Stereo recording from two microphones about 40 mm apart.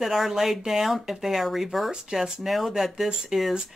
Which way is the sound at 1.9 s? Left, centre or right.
Right.